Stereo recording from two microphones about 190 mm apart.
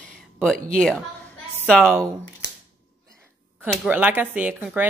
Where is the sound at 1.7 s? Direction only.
5° left (ahead or behind).